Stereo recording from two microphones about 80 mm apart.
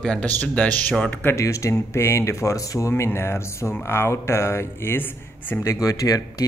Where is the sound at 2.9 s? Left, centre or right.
Left.